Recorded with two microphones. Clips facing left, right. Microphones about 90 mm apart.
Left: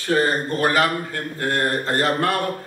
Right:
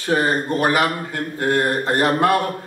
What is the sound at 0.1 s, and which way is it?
A man's voice, 15° right (ahead or behind).